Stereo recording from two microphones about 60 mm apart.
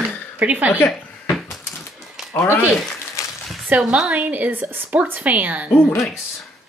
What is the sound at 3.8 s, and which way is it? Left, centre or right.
A woman's voice, centre.